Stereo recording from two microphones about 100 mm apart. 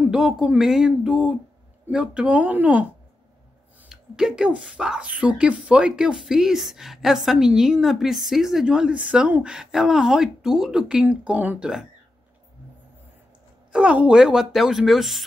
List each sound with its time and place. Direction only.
0.0 s speech: 5° right (ahead or behind)
3.9 s speech: 5° right (ahead or behind)
13.7 s speech: 10° right (ahead or behind)